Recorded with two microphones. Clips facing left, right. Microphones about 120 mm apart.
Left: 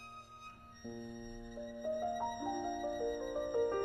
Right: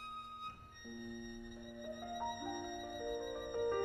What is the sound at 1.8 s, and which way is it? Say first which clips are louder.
Music: left 7 dB; 50° left (ahead or behind).